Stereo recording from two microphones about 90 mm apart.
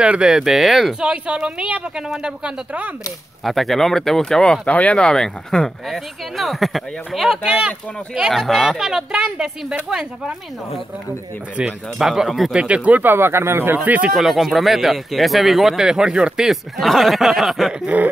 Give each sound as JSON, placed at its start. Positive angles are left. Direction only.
{"t": 0.0, "sound": "speech", "side_deg": -10}
{"t": 3.4, "sound": "speech", "side_deg": 0}
{"t": 11.5, "sound": "speech", "side_deg": -5}
{"t": 14.1, "sound": "speech", "side_deg": 0}